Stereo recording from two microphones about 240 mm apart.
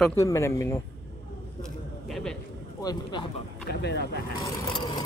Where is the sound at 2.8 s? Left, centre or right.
Centre.